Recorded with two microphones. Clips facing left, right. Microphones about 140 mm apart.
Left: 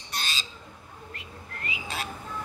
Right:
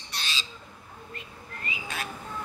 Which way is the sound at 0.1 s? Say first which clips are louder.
Left 2 dB; 45° left (ahead or behind).